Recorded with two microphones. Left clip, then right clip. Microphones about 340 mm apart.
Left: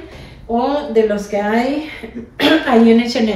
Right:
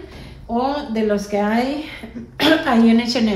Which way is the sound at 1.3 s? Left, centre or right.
Centre.